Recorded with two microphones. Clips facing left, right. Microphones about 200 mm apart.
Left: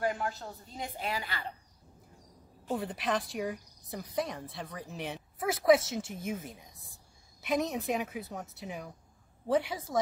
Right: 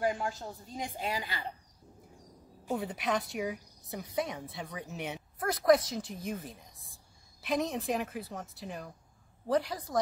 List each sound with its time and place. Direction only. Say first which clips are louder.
0.0 s a woman's voice: right 1 dB; 15° right (ahead or behind)
2.7 s speech: even; centre (ahead or behind)